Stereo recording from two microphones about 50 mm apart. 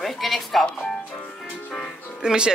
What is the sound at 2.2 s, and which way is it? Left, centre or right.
Speech, centre.